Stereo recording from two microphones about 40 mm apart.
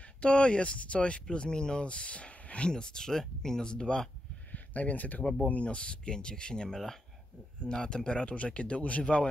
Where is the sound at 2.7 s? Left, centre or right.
Centre.